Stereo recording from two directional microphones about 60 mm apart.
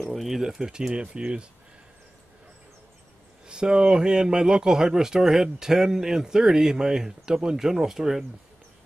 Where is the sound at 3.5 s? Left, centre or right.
Centre.